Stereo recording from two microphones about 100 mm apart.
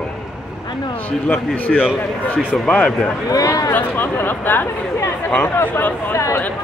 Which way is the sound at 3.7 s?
20° left (ahead or behind).